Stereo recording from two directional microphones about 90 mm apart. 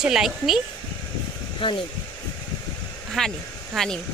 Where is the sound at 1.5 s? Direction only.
70° left (ahead or behind).